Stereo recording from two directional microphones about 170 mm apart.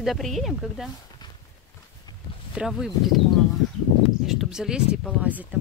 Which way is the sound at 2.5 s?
5° right (ahead or behind).